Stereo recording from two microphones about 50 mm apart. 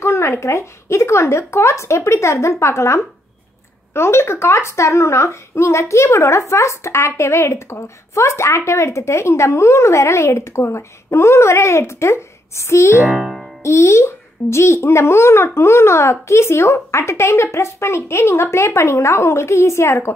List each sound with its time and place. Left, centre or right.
0.0 s a child's voice: left
13.0 s music: centre
13.6 s a child's voice: left